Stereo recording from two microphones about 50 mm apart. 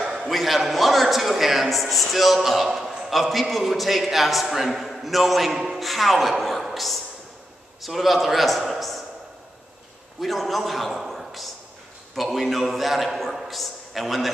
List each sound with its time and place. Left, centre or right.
0.3 s a man's voice: centre
10.2 s a man's voice: centre